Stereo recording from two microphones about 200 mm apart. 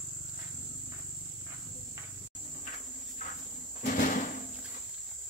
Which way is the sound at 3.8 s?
40° left (ahead or behind).